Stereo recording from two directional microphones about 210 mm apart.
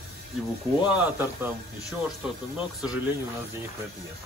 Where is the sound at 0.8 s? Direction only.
10° right (ahead or behind).